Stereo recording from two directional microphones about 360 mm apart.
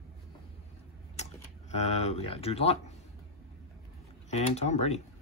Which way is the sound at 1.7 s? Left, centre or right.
Centre.